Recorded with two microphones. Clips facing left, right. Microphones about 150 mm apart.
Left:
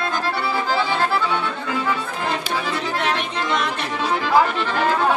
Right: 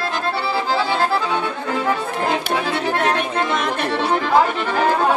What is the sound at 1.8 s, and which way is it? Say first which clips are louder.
Accordion: right 6 dB; 55° right (ahead or behind).